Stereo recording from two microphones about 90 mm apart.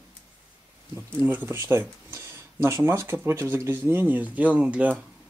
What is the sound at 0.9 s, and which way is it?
Speech, 20° right (ahead or behind).